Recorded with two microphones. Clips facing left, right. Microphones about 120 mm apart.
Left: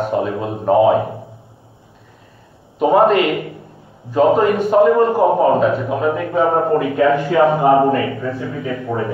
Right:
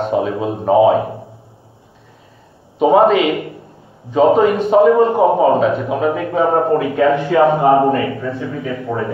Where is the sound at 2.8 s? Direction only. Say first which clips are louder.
Right 1 dB; 15° right (ahead or behind).